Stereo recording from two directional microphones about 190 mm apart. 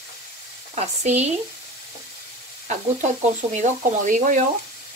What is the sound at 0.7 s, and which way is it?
Speech, 35° right (ahead or behind).